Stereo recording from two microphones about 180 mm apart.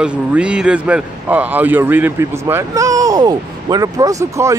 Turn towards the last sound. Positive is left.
turn(degrees=-15)  # may be behind; listen again after turning